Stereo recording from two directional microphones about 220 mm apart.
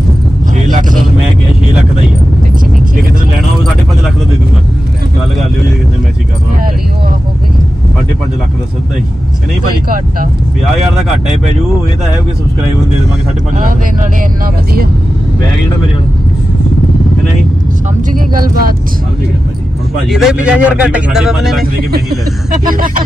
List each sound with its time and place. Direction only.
18.1 s speech: 40° right (ahead or behind)
20.1 s speech: centre (ahead or behind)
22.7 s speech: 40° right (ahead or behind)